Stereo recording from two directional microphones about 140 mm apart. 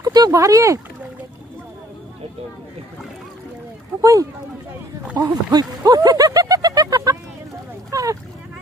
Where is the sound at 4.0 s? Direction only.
25° right (ahead or behind).